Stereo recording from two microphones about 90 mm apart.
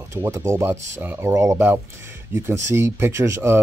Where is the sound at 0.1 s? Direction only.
30° right (ahead or behind).